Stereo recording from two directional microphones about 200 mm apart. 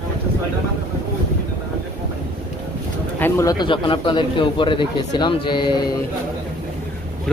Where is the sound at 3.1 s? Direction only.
10° left (ahead or behind).